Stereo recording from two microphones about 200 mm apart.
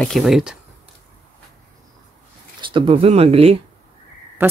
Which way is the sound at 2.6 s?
25° right (ahead or behind).